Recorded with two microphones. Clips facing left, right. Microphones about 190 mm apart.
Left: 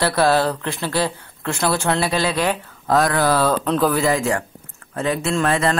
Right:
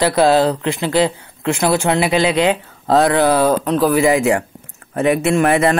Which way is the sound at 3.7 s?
5° right (ahead or behind).